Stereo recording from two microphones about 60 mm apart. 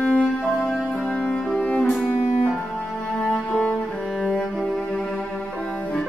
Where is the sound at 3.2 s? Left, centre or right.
Centre.